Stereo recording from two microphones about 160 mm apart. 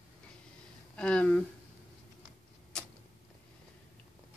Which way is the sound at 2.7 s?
5° left (ahead or behind).